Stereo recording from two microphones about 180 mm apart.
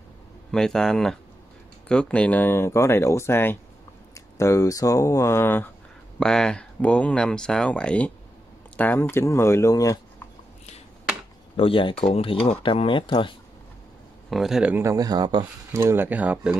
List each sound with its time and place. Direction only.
0.5 s speech: 5° left (ahead or behind); by 9.9 s 20° left (ahead or behind)
11.5 s speech: 30° left (ahead or behind)
14.3 s speech: centre (ahead or behind)